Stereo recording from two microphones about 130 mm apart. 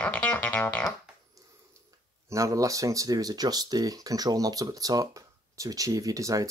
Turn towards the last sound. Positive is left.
turn(degrees=-25)  # may be behind; listen again after turning